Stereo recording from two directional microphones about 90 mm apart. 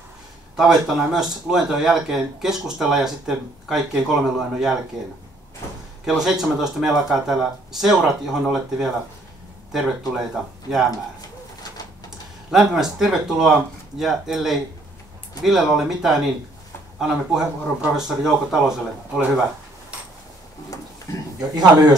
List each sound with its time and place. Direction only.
0.6 s speech: 5° right (ahead or behind)
6.0 s speech: 5° right (ahead or behind)
11.1 s pigeon: 45° left (ahead or behind)
12.4 s speech: 5° right (ahead or behind)
21.4 s speech: 10° right (ahead or behind)